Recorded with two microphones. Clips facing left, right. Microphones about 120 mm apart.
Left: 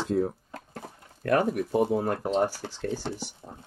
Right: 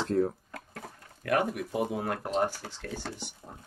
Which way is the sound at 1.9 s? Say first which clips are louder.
Left 5 dB; 40° left (ahead or behind).